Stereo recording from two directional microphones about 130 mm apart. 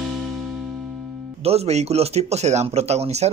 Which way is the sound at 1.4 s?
50° right (ahead or behind).